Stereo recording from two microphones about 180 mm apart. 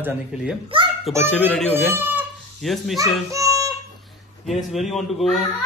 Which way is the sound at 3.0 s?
15° right (ahead or behind).